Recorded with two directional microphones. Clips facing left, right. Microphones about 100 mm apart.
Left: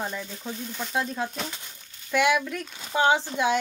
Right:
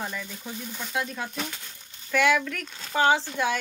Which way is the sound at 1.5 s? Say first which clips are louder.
Even; 20° left (ahead or behind).